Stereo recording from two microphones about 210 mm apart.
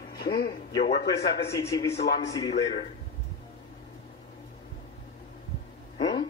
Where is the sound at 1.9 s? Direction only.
50° left (ahead or behind).